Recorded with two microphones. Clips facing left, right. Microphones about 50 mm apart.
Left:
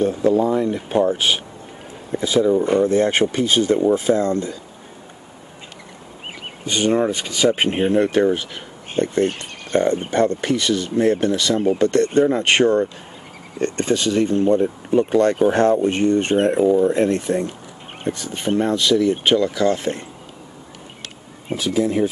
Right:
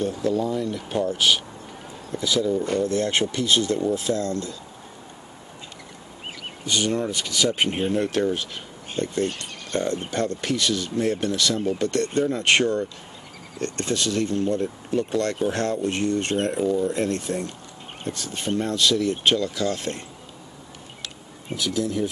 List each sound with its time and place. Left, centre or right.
0.0 s speech: left
6.6 s speech: left
9.2 s speech: left
9.9 s speech: left
21.5 s speech: left